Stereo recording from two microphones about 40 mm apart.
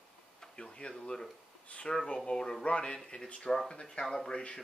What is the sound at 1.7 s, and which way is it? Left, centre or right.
Speech, left.